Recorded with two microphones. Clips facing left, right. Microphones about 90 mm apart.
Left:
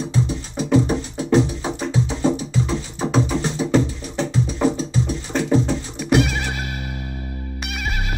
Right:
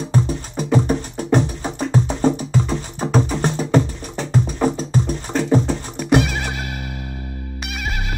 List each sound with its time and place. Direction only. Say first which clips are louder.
0.1 s music: right 2 dB; 45° right (ahead or behind)
6.0 s music: right 1 dB; centre (ahead or behind)